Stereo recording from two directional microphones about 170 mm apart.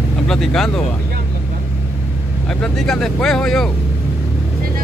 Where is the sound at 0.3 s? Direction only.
5° left (ahead or behind).